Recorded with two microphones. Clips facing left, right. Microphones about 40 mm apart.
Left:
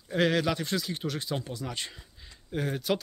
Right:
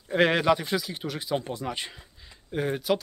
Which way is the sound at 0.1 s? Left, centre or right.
Right.